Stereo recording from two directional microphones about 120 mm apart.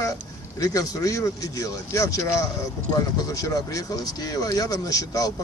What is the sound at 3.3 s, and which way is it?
Speech, 30° left (ahead or behind).